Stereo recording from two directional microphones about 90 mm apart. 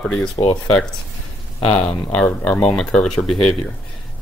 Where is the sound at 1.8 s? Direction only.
15° left (ahead or behind).